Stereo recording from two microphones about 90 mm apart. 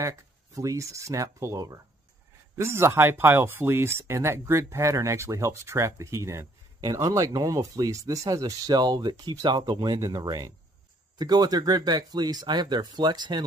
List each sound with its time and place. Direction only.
0.0 s speech: 35° right (ahead or behind); by 9.9 s 55° right (ahead or behind)
9.9 s speech: 40° right (ahead or behind)